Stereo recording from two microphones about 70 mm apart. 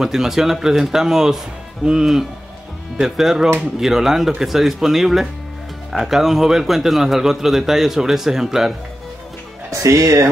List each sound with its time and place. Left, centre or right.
0.0 s a man's voice: centre
9.7 s speech: right